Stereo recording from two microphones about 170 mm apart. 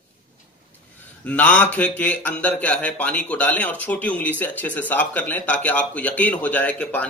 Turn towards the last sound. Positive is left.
turn(degrees=10)  # may be behind; listen again after turning